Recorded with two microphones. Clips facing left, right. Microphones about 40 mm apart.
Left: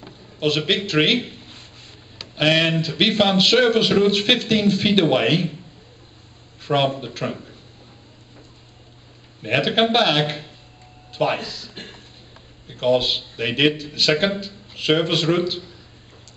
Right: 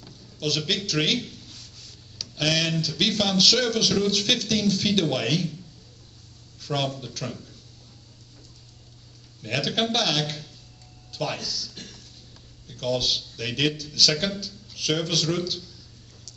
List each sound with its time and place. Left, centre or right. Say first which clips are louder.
0.0 s a sound: left 7 dB; left
2.1 s speech: left 7 dB; left
6.6 s speech: left 8 dB; left
9.4 s speech: left 7 dB; left